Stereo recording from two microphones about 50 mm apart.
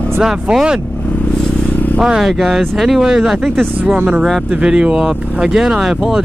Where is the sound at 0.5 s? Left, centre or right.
Centre.